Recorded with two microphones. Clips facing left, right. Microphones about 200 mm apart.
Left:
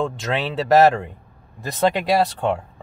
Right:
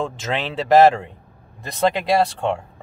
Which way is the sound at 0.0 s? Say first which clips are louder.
Left 1 dB; centre (ahead or behind).